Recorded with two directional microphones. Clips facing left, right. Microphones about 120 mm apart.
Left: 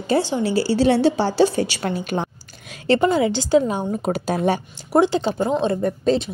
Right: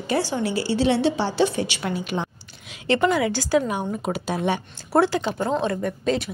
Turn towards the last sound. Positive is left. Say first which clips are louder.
# left 4 dB
turn(degrees=30)  # may be behind; listen again after turning